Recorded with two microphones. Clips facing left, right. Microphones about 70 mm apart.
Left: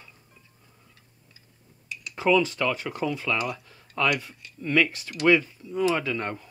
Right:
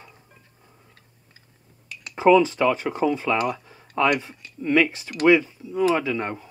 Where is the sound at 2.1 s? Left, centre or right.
Right.